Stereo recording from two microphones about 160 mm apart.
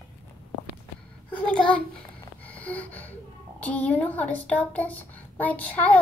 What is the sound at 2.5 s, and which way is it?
Snort, 10° left (ahead or behind).